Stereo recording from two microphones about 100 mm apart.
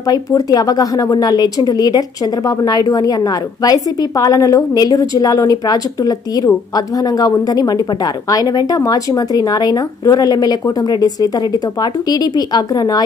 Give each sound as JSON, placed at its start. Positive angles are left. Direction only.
{"t": 0.1, "sound": "a woman's voice", "side_deg": 40}